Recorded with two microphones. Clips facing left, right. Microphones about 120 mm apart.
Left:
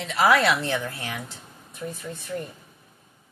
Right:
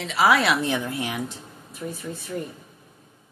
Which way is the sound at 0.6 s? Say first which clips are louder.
Right 3 dB; 15° right (ahead or behind).